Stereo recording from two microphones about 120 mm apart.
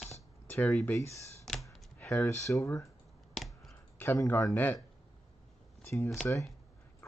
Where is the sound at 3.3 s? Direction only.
Centre (ahead or behind).